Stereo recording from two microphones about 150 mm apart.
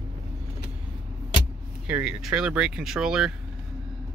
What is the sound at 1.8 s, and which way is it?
Speech, 5° right (ahead or behind).